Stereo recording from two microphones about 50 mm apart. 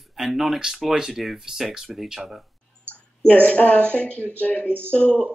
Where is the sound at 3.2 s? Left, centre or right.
Left.